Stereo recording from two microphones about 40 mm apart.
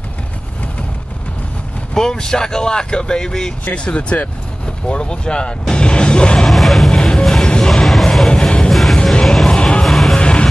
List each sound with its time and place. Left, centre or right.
2.0 s speech: centre
3.6 s speech: left
6.4 s music: centre
6.9 s music: centre
7.8 s music: centre
8.3 s music: left
9.2 s music: centre
9.5 s music: left
9.8 s music: centre
10.1 s music: left